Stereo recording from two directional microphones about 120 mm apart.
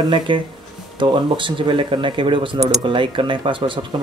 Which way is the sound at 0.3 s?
45° right (ahead or behind).